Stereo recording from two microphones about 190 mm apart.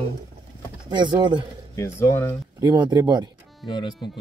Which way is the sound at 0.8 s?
20° right (ahead or behind).